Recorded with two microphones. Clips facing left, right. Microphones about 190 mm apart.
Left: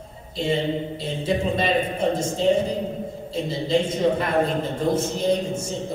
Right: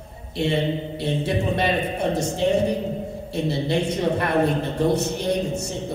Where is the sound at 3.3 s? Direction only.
65° right (ahead or behind).